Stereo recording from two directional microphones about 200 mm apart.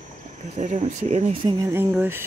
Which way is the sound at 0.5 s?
35° right (ahead or behind).